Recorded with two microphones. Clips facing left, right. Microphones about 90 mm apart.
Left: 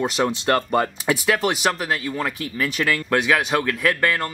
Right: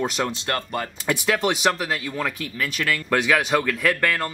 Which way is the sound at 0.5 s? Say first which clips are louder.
Left 7 dB; 35° left (ahead or behind).